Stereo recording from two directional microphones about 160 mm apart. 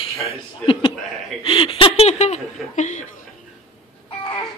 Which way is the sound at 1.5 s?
35° left (ahead or behind).